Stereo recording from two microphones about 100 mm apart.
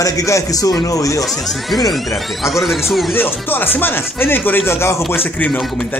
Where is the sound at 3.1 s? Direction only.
20° left (ahead or behind).